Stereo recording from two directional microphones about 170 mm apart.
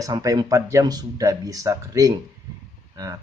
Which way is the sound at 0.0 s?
20° right (ahead or behind).